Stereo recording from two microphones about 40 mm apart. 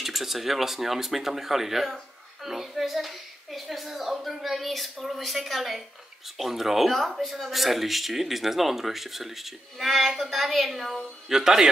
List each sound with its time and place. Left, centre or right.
0.0 s a man's voice: centre